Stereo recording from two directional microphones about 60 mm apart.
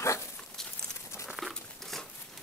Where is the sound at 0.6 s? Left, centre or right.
Centre.